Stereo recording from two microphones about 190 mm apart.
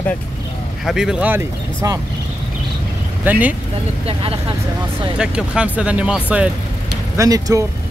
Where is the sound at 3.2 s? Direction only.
10° right (ahead or behind).